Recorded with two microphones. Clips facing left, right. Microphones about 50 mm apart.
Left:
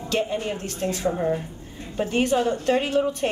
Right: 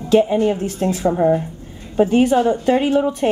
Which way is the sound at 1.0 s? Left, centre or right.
Right.